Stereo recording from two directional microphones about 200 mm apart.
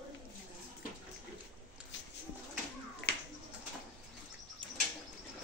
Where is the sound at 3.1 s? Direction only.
50° left (ahead or behind).